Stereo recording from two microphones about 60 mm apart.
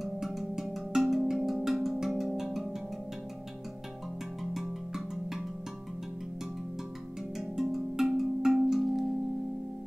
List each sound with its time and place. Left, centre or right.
0.0 s music: centre
4.4 s music: centre
7.3 s music: centre